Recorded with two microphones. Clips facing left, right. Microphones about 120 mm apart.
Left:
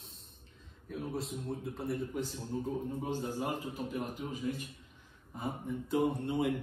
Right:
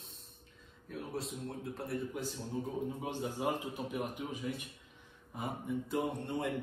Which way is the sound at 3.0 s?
15° right (ahead or behind).